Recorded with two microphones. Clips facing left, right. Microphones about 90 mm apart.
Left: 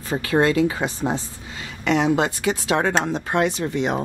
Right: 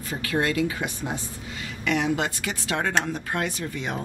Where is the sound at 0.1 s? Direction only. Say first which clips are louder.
Left 7 dB; 30° left (ahead or behind).